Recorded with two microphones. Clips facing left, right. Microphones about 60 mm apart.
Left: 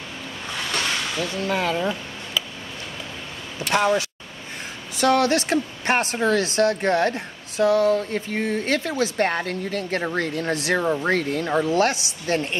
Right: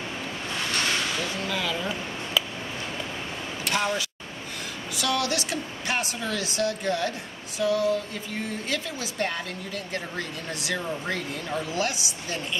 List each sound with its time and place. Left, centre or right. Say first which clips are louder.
1.5 s speech: left 8 dB; left
3.7 s speech: left 7 dB; left
4.9 s speech: left 8 dB; left